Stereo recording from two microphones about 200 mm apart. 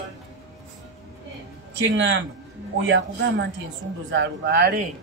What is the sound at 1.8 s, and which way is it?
A man's voice, 65° right (ahead or behind).